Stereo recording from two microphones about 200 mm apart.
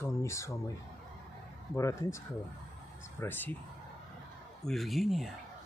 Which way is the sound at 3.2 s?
10° left (ahead or behind).